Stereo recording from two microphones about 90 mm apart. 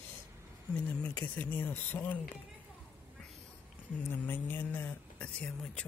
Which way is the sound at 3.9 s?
20° left (ahead or behind).